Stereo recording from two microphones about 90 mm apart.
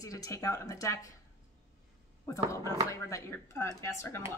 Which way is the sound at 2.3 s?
35° left (ahead or behind).